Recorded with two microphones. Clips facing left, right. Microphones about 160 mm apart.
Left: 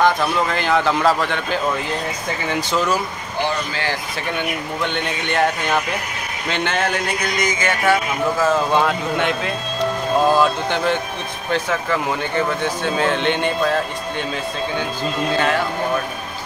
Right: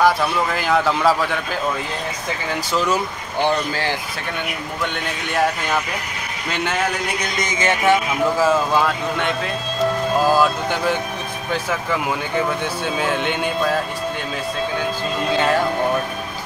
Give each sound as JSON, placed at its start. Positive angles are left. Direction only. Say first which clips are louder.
{"t": 0.0, "sound": "a man's voice", "louder": "even", "side_deg": -5}
{"t": 4.9, "sound": "a man's voice", "louder": "left 2 dB", "side_deg": -5}
{"t": 7.5, "sound": "speech", "louder": "right 1 dB", "side_deg": -25}
{"t": 8.4, "sound": "speech", "louder": "left 1 dB", "side_deg": -10}
{"t": 8.8, "sound": "a man's voice", "louder": "left 1 dB", "side_deg": 0}